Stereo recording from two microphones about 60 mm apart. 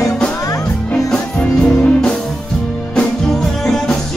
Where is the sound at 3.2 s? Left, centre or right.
Centre.